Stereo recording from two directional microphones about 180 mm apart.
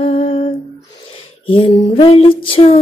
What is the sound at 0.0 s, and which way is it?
Humming, 35° left (ahead or behind).